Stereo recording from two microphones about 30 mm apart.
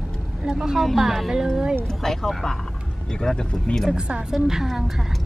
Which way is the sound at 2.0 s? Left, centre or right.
Centre.